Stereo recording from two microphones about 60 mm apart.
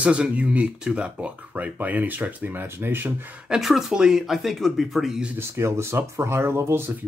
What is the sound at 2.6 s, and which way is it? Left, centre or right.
Speech, right.